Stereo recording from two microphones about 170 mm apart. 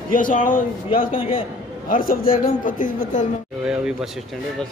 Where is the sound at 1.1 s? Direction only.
30° left (ahead or behind).